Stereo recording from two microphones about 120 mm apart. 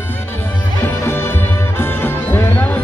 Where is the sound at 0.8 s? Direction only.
20° left (ahead or behind).